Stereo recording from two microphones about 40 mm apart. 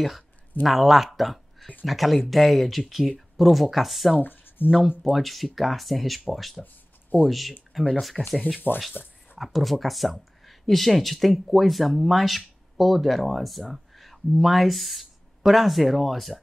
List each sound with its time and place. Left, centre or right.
0.7 s speech: centre
4.2 s a sound: left
4.6 s speech: right
5.0 s speech: centre
6.6 s a sound: left
7.2 s speech: centre
8.6 s speech: left
9.4 s speech: centre